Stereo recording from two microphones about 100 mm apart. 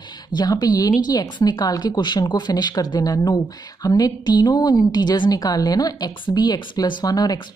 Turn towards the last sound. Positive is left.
turn(degrees=40)  # may be behind; listen again after turning